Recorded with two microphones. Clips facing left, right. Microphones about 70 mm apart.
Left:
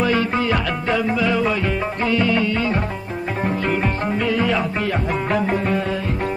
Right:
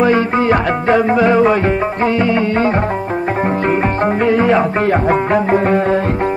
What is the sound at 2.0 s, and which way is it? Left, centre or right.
Music, right.